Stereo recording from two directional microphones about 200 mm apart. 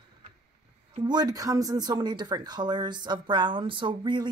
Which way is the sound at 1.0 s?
20° right (ahead or behind).